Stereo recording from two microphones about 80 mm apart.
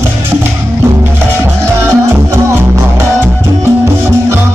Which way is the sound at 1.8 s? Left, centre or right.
Right.